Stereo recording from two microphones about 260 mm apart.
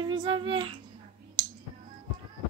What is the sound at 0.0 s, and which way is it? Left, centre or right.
Speech, centre.